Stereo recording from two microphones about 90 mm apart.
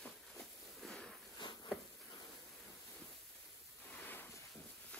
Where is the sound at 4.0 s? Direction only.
20° left (ahead or behind).